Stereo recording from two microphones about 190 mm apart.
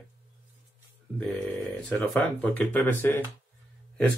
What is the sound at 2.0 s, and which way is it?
Speech, 10° left (ahead or behind).